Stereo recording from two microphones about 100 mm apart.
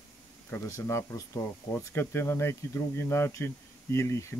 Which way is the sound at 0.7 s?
25° left (ahead or behind).